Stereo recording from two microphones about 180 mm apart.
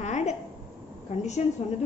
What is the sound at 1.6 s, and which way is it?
Speech, 35° left (ahead or behind).